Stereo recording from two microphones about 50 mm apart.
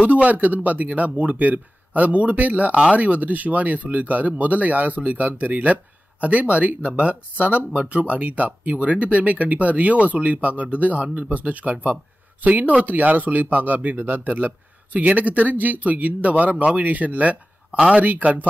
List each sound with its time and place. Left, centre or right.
0.0 s a man's voice: right
17.6 s speech: centre
18.0 s a man's voice: right